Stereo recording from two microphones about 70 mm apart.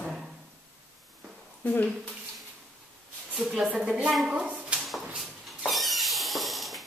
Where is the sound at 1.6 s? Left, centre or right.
Centre.